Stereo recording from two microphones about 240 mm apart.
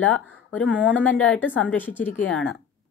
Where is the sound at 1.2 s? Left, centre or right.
Centre.